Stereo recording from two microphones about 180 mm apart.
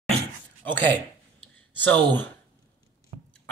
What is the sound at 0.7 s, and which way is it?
Speech, 10° left (ahead or behind).